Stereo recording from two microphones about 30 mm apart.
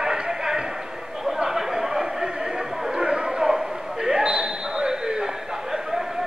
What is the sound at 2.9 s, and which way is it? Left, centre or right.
Basketball bounce, right.